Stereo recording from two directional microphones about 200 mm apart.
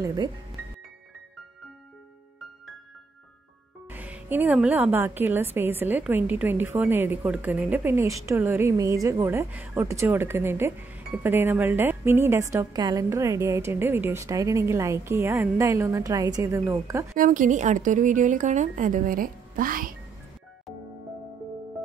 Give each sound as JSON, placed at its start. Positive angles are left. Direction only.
{"t": 0.0, "sound": "a woman's voice", "side_deg": -20}
{"t": 3.9, "sound": "a woman's voice", "side_deg": -10}
{"t": 17.1, "sound": "a woman's voice", "side_deg": -40}